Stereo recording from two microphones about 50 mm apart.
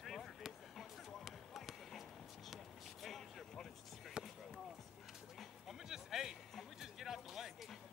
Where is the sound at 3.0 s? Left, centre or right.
Centre.